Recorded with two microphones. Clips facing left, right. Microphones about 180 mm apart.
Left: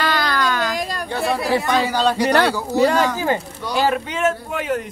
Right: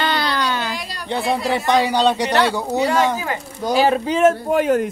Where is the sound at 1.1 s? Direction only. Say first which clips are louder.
Even; 20° right (ahead or behind).